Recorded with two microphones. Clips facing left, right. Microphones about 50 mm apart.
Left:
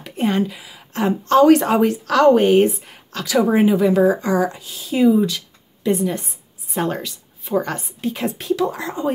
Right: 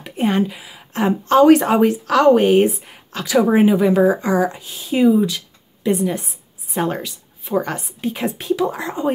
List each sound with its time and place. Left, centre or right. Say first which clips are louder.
0.0 s a sound: right 1 dB; centre
0.4 s a woman's voice: right 1 dB; right
5.9 s a woman's voice: right 1 dB; centre